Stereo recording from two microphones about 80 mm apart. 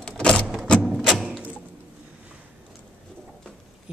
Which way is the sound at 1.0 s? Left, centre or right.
Centre.